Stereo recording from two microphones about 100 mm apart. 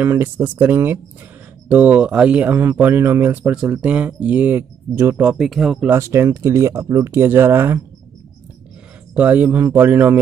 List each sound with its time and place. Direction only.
0.0 s speech: 20° right (ahead or behind)
5.2 s speech: 10° right (ahead or behind)
5.9 s speech: 30° right (ahead or behind)
9.1 s speech: 15° right (ahead or behind)